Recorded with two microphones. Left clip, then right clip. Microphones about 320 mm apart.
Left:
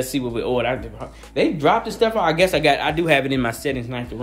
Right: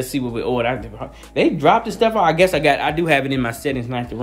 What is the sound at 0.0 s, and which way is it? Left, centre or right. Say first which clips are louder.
Speech: right 1 dB; centre.